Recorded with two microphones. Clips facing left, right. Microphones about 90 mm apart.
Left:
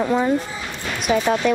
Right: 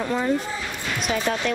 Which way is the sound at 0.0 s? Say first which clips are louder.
Left 4 dB; 15° left (ahead or behind).